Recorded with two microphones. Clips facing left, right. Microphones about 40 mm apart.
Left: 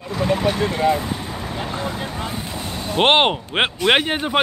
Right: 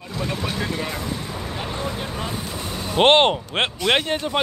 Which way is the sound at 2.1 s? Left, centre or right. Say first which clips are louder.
Left 1 dB; centre.